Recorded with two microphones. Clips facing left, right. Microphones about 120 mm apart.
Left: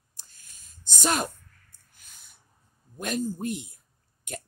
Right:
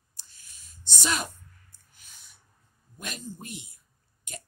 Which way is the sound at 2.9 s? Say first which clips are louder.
Left 10 dB; 45° left (ahead or behind).